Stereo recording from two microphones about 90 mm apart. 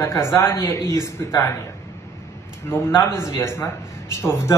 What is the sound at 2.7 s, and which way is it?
A man's voice, 25° left (ahead or behind).